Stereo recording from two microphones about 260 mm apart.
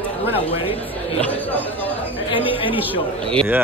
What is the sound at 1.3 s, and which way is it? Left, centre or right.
Speech, centre.